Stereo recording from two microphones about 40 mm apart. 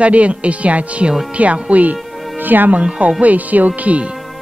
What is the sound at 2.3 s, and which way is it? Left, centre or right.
Speech, right.